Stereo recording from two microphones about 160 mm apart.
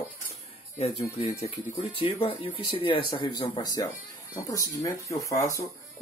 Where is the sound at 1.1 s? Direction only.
20° left (ahead or behind).